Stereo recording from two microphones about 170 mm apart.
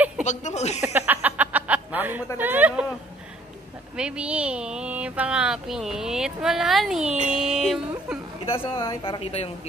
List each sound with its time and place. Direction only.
0.2 s speech: 45° left (ahead or behind)
0.7 s a sound: 10° right (ahead or behind)
2.3 s speech: 10° right (ahead or behind)
3.9 s speech: 5° right (ahead or behind)
8.5 s a woman's voice: 30° left (ahead or behind)